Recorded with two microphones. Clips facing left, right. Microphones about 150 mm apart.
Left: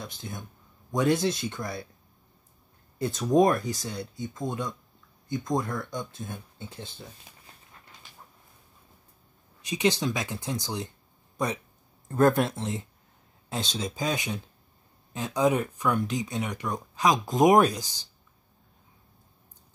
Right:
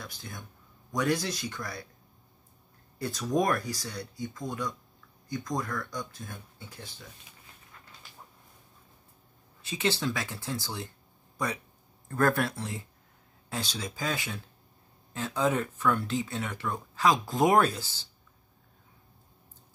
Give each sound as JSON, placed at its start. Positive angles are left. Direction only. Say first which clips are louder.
{"t": 0.0, "sound": "speech", "louder": "left 5 dB", "side_deg": 20}
{"t": 3.0, "sound": "speech", "louder": "left 6 dB", "side_deg": 25}
{"t": 9.6, "sound": "speech", "louder": "left 4 dB", "side_deg": 15}